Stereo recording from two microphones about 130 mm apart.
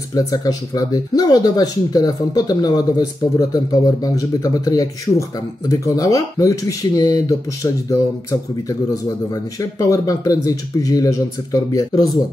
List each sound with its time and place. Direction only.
0.1 s speech: 25° left (ahead or behind)